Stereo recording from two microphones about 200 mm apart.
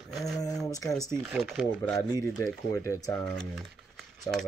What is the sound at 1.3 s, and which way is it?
Speech, centre (ahead or behind).